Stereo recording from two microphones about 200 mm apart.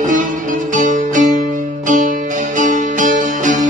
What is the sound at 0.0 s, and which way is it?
Music, 40° right (ahead or behind).